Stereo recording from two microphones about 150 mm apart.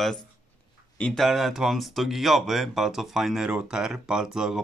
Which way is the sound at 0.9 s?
5° left (ahead or behind).